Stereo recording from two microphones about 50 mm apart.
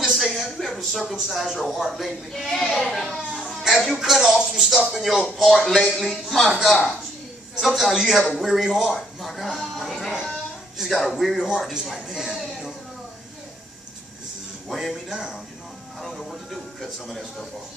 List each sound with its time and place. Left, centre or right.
0.1 s speech: centre
8.9 s a sound: centre
9.6 s music: centre
10.8 s a man's voice: centre
11.3 s speech: centre
12.1 s a sound: centre
14.7 s speech: centre
16.0 s vehicle: centre
17.1 s speech: centre